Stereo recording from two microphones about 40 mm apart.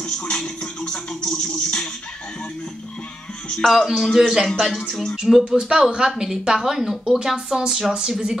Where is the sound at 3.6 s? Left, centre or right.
Centre.